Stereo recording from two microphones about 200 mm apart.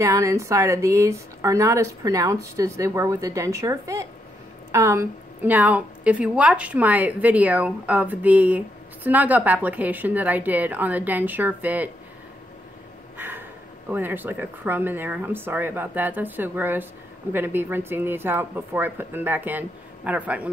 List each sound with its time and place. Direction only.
0.0 s a woman's voice: 15° right (ahead or behind)
13.2 s a sound: 10° right (ahead or behind)
13.8 s a woman's voice: 10° right (ahead or behind)